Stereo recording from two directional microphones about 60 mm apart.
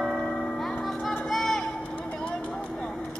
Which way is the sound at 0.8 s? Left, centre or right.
Centre.